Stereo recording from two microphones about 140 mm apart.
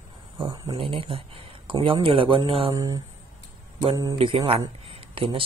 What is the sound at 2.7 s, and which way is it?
Speech, 30° right (ahead or behind).